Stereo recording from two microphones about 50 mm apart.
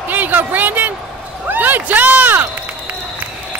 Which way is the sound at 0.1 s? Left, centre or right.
Right.